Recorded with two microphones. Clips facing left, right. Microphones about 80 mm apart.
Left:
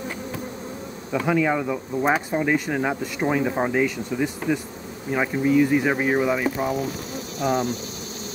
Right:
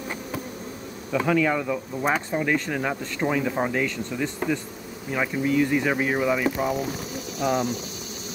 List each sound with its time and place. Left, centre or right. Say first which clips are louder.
1.1 s speech: left 1 dB; centre
6.5 s speech: left 1 dB; centre